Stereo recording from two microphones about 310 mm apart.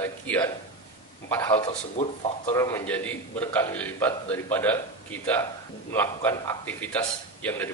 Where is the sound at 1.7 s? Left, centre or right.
Left.